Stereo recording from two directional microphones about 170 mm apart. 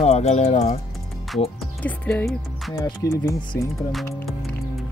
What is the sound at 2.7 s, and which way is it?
Speech, 15° left (ahead or behind).